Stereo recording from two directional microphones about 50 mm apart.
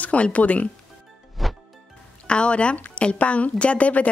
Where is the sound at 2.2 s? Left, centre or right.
Left.